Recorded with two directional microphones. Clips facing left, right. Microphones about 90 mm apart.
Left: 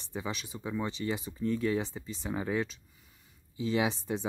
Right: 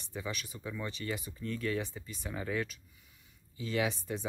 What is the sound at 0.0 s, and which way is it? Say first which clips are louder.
Speech: left 3 dB; 25° left (ahead or behind).